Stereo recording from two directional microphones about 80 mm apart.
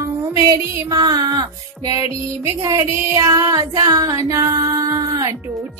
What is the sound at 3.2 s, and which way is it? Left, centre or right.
Music, right.